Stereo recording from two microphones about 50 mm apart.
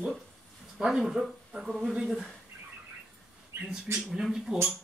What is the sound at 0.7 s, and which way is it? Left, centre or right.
Speech, centre.